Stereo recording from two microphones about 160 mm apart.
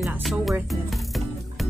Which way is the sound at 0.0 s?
Centre (ahead or behind).